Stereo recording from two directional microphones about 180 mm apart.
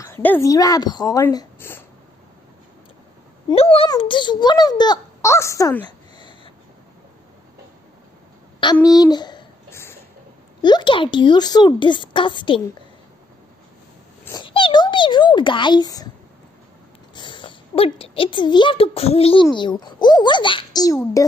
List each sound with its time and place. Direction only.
0.0 s a woman's voice: 10° left (ahead or behind)
3.4 s a child's voice: 30° left (ahead or behind)
8.8 s a sound: 20° left (ahead or behind)
10.6 s speech: 25° left (ahead or behind)
14.4 s a sound: 30° left (ahead or behind)
17.1 s a child's voice: 25° left (ahead or behind)